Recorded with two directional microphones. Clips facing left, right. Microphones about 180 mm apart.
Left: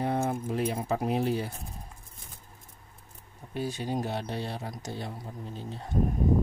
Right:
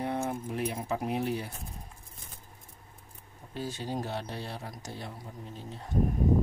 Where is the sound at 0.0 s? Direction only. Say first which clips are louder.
Left 3 dB; 35° left (ahead or behind).